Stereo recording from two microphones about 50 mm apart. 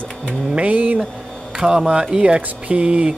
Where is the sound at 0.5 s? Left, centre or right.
Right.